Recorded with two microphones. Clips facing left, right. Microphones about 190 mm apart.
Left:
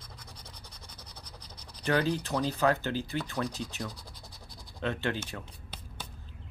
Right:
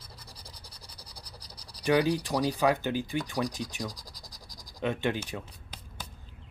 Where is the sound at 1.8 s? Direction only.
15° right (ahead or behind).